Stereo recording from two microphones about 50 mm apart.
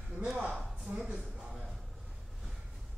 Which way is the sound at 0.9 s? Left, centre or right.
Right.